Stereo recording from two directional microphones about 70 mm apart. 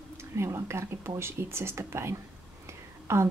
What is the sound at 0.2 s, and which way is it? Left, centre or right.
Speech, right.